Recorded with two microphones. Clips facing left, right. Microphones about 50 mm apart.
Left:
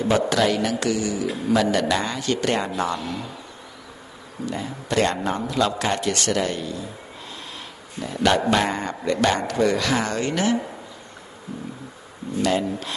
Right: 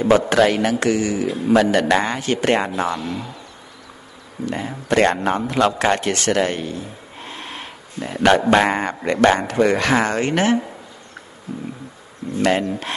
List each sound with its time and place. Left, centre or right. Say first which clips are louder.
0.3 s a man's voice: right 5 dB; right
1.2 s a man's voice: right 5 dB; right; by 3.2 s centre
4.5 s a man's voice: right 5 dB; right
12.4 s speech: right 4 dB; right